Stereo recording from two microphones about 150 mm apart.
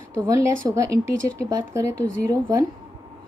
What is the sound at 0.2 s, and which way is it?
A woman's voice, 20° right (ahead or behind).